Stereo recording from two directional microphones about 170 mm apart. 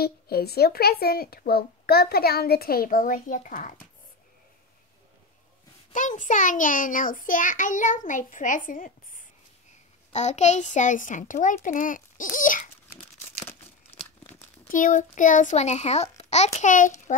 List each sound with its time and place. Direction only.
0.0 s a woman's voice: 65° left (ahead or behind); by 3.7 s 50° left (ahead or behind)
5.9 s a child's voice: 50° left (ahead or behind)
12.4 s babbling: 50° left (ahead or behind)
13.9 s crumpling: 10° left (ahead or behind)
14.6 s a child's voice: 50° left (ahead or behind)